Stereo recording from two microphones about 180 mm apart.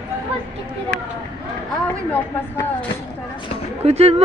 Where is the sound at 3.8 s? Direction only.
35° right (ahead or behind).